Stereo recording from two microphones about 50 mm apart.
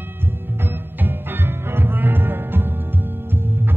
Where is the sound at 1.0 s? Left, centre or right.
Right.